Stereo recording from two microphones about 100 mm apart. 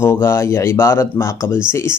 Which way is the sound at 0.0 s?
25° left (ahead or behind).